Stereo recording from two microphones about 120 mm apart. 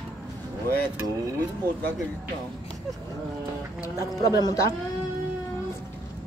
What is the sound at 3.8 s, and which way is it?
Speech, 35° left (ahead or behind).